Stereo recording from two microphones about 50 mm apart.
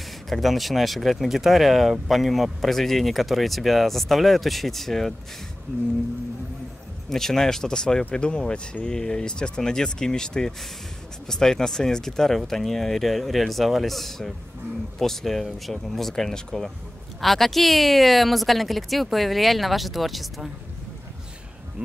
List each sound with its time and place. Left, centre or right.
0.3 s speech: centre
7.1 s speech: centre